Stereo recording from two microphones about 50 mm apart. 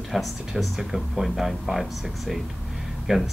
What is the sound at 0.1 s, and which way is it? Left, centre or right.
Speech, centre.